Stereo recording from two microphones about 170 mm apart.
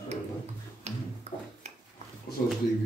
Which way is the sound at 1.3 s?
40° right (ahead or behind).